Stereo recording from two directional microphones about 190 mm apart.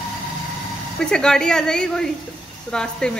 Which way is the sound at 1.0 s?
5° left (ahead or behind).